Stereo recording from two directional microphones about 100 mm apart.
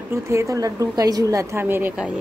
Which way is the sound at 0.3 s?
30° right (ahead or behind).